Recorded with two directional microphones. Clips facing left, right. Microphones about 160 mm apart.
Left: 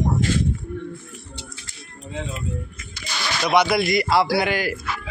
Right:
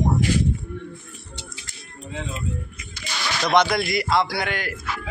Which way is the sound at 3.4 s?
5° left (ahead or behind).